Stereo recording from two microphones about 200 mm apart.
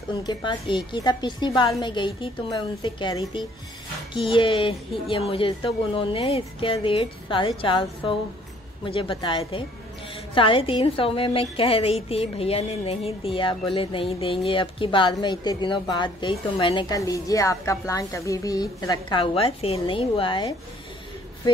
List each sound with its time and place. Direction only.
0.1 s a woman's voice: 20° left (ahead or behind)